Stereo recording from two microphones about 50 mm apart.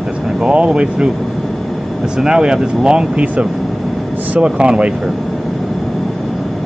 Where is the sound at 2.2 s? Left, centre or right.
Centre.